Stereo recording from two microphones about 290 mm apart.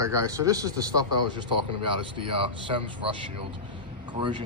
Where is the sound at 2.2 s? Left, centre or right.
Centre.